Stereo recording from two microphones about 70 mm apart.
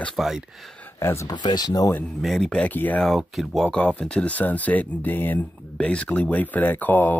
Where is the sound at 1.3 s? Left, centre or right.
Left.